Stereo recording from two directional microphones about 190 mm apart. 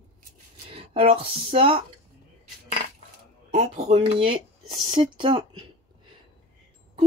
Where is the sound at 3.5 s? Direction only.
35° right (ahead or behind).